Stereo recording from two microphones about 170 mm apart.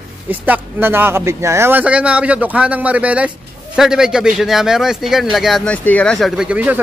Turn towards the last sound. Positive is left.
turn(degrees=-10)  # may be behind; listen again after turning